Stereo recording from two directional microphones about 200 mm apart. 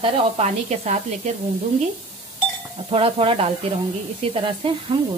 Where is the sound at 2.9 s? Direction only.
30° right (ahead or behind).